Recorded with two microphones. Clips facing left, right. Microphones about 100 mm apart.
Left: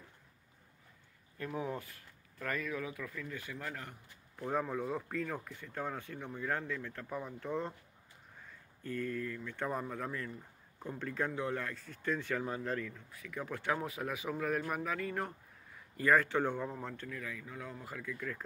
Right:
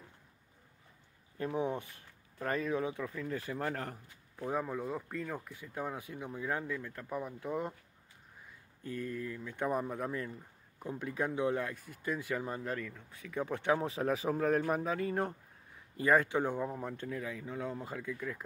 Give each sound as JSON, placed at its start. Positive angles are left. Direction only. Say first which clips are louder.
{"t": 1.4, "sound": "speech", "louder": "right 4 dB", "side_deg": -25}
{"t": 4.4, "sound": "speech", "louder": "even", "side_deg": -5}
{"t": 8.8, "sound": "speech", "louder": "left 1 dB", "side_deg": -15}
{"t": 13.1, "sound": "speech", "louder": "right 7 dB", "side_deg": -25}
{"t": 16.0, "sound": "speech", "louder": "right 1 dB", "side_deg": -20}